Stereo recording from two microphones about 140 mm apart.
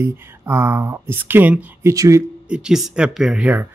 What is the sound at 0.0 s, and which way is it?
Speech, 20° right (ahead or behind).